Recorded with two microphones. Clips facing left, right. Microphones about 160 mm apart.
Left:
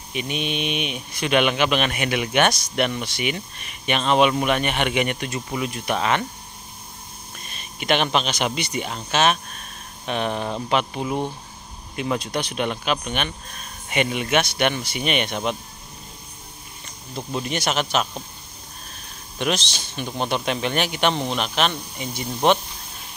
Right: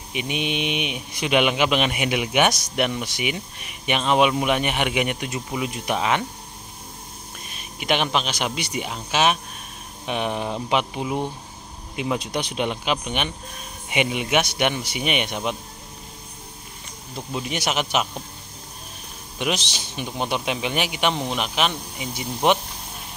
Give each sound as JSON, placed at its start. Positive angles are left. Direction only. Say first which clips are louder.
{"t": 0.1, "sound": "speech", "louder": "even", "side_deg": -15}
{"t": 7.3, "sound": "speech", "louder": "left 2 dB", "side_deg": -10}
{"t": 17.3, "sound": "speech", "louder": "left 1 dB", "side_deg": -5}
{"t": 19.3, "sound": "speech", "louder": "left 1 dB", "side_deg": -10}